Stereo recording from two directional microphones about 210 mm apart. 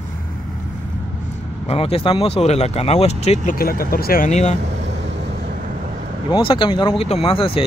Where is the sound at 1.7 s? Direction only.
25° left (ahead or behind).